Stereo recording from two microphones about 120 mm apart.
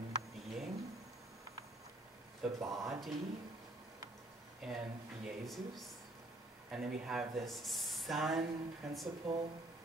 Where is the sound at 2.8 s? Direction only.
Centre (ahead or behind).